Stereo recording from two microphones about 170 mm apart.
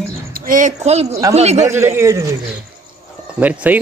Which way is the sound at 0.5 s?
50° right (ahead or behind).